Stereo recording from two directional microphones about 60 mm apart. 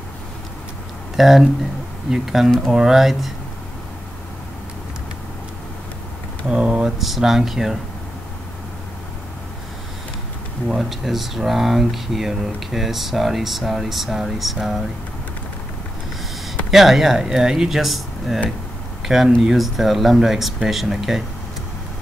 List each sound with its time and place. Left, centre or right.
1.1 s speech: centre
6.5 s speech: centre
7.0 s speech: centre
10.8 s speech: centre
16.4 s speech: centre